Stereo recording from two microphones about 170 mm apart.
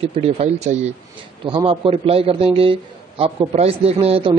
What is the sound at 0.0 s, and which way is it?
A man's voice, 35° right (ahead or behind).